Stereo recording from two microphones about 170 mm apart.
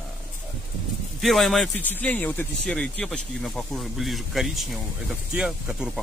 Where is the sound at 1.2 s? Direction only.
Centre (ahead or behind).